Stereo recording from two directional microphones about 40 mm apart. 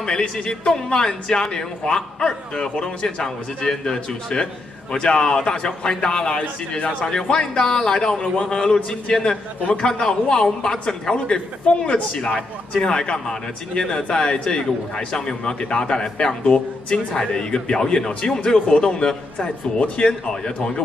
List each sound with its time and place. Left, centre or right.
0.5 s a man's voice: centre
7.1 s speech: centre